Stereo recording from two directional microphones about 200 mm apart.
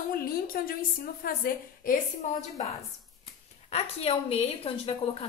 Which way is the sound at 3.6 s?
30° left (ahead or behind).